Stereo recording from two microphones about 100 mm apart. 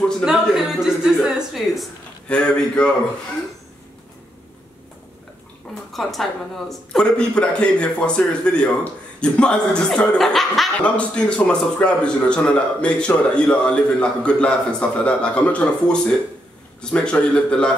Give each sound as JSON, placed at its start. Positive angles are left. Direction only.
{"t": 0.2, "sound": "a sound", "side_deg": -5}
{"t": 2.2, "sound": "a man's voice", "side_deg": 10}
{"t": 5.9, "sound": "a man's voice", "side_deg": 0}